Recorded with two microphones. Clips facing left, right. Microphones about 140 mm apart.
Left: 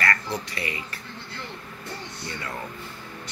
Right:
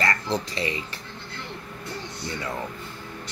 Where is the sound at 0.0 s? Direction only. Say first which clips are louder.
Right 2 dB; 25° right (ahead or behind).